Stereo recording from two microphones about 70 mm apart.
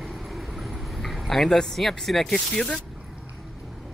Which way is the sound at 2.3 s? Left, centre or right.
Centre.